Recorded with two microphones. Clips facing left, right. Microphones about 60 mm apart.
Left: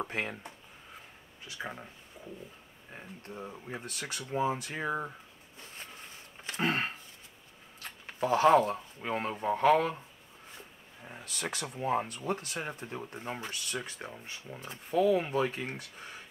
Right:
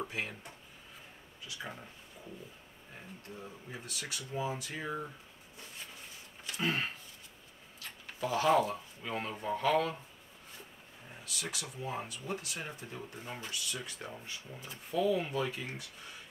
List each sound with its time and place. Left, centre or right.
0.1 s speech: left
1.6 s speech: centre
3.3 s speech: left
4.1 s speech: left
4.8 s speech: left
6.6 s speech: left
8.2 s speech: left
11.1 s speech: left
12.6 s speech: left
15.5 s speech: left